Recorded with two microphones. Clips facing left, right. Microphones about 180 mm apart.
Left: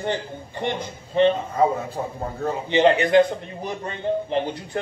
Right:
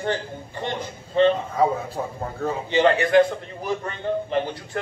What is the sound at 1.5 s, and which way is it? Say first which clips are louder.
A man's voice: left 1 dB; centre (ahead or behind).